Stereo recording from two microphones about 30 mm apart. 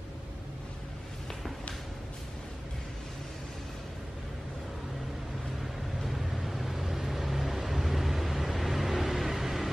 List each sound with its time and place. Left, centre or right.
6.0 s vehicle: centre